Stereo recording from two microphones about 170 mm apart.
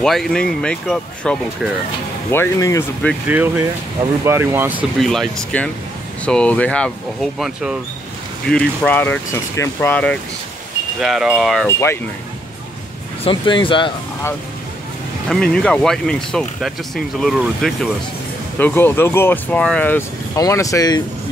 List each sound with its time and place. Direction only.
0.0 s speech: centre (ahead or behind)
2.3 s speech: 15° left (ahead or behind)
3.3 s speech: 10° right (ahead or behind)
5.0 s speech: centre (ahead or behind)
11.0 s speech: centre (ahead or behind)
11.6 s speech: 15° left (ahead or behind)
13.2 s speech: 30° left (ahead or behind)
15.2 s speech: 5° left (ahead or behind)
18.6 s speech: 10° left (ahead or behind)